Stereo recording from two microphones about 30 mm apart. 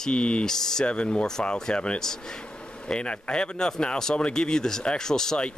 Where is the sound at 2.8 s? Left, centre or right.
Left.